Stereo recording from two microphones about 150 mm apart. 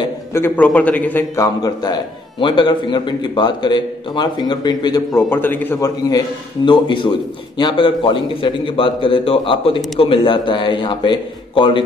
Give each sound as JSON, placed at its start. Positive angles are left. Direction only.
{"t": 0.3, "sound": "a man's voice", "side_deg": 15}
{"t": 5.3, "sound": "a man's voice", "side_deg": 15}
{"t": 6.0, "sound": "a man's voice", "side_deg": 30}